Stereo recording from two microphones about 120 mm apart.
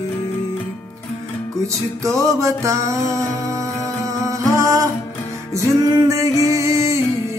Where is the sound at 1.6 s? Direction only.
25° right (ahead or behind).